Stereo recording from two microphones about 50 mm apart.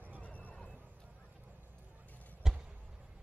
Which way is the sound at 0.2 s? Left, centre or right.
Left.